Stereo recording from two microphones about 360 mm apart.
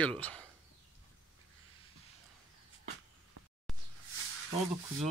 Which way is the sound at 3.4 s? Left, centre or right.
Right.